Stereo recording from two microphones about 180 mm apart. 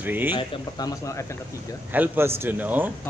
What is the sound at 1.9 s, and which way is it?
Speech, 10° right (ahead or behind).